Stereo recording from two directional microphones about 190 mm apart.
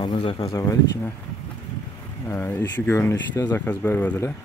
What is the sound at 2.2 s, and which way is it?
Speech, 15° left (ahead or behind).